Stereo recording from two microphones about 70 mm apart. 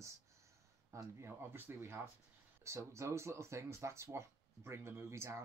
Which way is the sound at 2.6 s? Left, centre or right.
Right.